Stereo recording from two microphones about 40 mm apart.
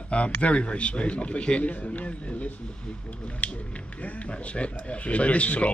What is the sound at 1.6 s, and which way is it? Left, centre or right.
Speech, left.